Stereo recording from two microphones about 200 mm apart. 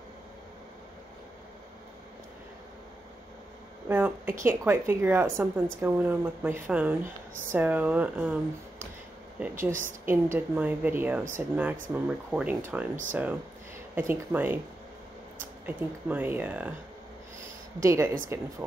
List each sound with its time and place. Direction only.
3.9 s a woman's voice: 10° right (ahead or behind)
9.7 s a woman's voice: 40° right (ahead or behind)
10.0 s a woman's voice: 10° right (ahead or behind)
15.6 s a woman's voice: 10° right (ahead or behind)
17.8 s a woman's voice: 15° right (ahead or behind)